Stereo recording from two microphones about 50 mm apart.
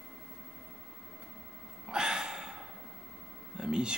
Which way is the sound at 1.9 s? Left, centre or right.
Centre.